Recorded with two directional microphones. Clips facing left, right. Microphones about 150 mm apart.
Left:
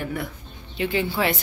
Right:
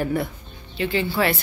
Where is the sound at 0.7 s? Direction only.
10° left (ahead or behind).